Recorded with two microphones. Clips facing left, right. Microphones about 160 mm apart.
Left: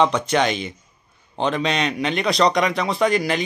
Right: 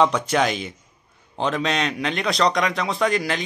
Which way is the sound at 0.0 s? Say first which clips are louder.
Left 1 dB; 5° right (ahead or behind).